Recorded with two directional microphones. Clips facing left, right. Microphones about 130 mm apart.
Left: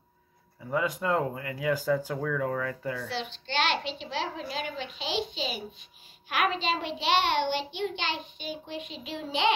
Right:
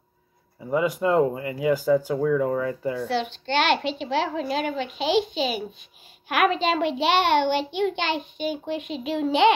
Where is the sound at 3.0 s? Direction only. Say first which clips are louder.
Right 9 dB; 55° right (ahead or behind).